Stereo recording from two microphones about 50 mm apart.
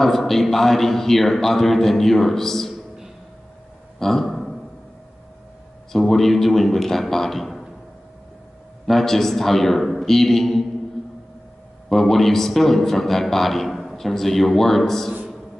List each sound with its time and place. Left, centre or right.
0.0 s a man's voice: centre
4.0 s speech: centre
5.9 s a man's voice: centre
8.8 s a man's voice: centre
11.9 s a man's voice: centre